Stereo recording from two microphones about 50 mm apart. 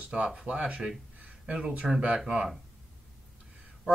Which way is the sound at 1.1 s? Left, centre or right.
Right.